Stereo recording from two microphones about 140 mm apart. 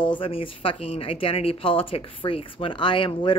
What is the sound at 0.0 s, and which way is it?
Speech, 35° left (ahead or behind).